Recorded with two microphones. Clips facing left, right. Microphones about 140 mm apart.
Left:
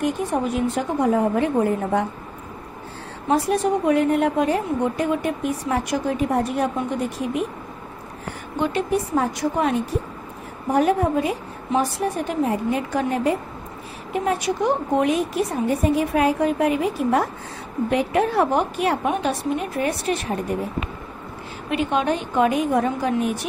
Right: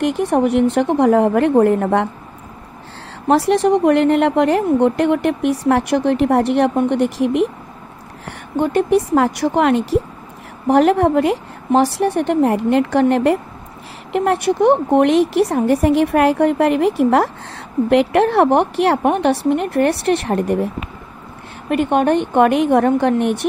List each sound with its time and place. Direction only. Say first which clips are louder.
0.0 s a woman's voice: right 7 dB; 75° right (ahead or behind)
3.3 s a woman's voice: right 6 dB; 80° right
8.3 s speech: right 6 dB; 50° right (ahead or behind)
8.9 s a woman's voice: right 7 dB; 85° right
10.7 s a woman's voice: right 6 dB; 75° right (ahead or behind)
21.6 s a woman's voice: right 6 dB; 55° right (ahead or behind)